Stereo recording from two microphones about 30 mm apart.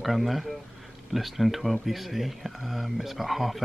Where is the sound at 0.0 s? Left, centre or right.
Centre.